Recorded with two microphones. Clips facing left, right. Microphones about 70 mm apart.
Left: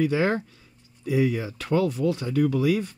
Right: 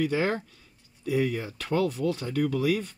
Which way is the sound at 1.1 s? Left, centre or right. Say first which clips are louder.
Left 3 dB; centre.